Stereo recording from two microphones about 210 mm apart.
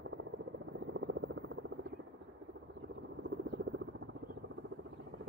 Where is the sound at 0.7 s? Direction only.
60° right (ahead or behind).